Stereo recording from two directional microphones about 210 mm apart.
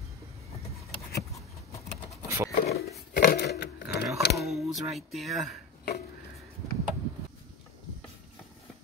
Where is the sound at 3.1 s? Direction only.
45° left (ahead or behind).